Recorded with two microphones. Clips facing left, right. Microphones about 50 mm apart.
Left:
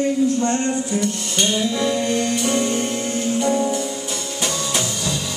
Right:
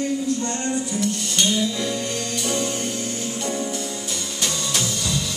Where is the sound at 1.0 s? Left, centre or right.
Centre.